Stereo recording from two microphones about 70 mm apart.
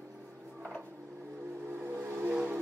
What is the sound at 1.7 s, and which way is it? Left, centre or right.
Vehicle, right.